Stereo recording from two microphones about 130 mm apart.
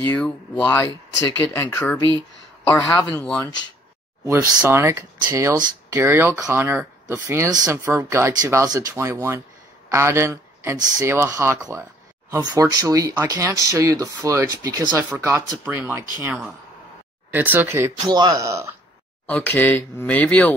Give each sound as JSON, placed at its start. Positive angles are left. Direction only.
{"t": 0.0, "sound": "speech", "side_deg": 10}
{"t": 3.1, "sound": "speech", "side_deg": 10}
{"t": 4.6, "sound": "speech", "side_deg": -20}
{"t": 19.2, "sound": "speech", "side_deg": 10}